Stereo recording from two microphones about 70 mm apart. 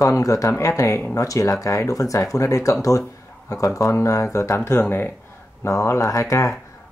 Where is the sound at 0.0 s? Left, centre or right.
Left.